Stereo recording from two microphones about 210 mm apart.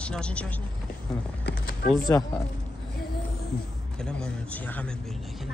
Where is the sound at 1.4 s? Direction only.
50° left (ahead or behind).